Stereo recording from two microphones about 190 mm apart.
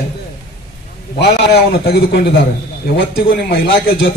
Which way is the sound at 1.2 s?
55° left (ahead or behind).